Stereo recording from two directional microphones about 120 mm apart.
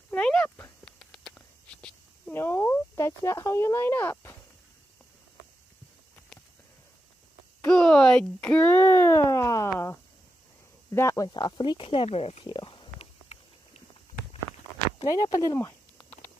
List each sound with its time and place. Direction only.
0.1 s a sound: 10° left (ahead or behind)
2.3 s speech: 20° left (ahead or behind)
7.6 s speech: 5° left (ahead or behind); by 12.4 s 55° left (ahead or behind)
12.4 s speech: 40° left (ahead or behind)
15.0 s speech: 30° left (ahead or behind)